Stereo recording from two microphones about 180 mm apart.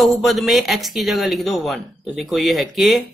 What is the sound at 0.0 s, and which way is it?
Speech, centre (ahead or behind).